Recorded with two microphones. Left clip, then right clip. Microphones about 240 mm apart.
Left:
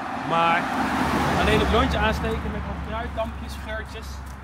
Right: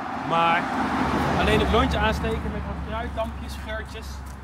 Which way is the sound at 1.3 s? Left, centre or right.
Left.